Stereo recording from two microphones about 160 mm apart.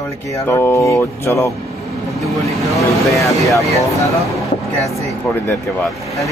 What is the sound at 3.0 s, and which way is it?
Speech, 20° left (ahead or behind).